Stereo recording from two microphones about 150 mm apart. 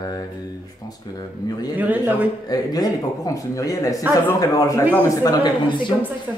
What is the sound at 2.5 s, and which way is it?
A man's voice, 25° left (ahead or behind).